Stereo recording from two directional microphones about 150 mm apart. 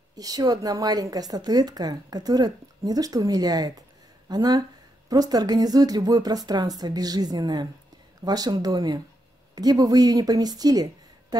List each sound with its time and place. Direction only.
0.1 s a woman's voice: 25° right (ahead or behind)